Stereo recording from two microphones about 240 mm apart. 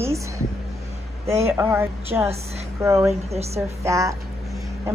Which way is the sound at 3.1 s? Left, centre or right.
Right.